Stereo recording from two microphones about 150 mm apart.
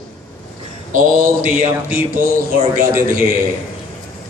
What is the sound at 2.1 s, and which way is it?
Speech, 70° right (ahead or behind).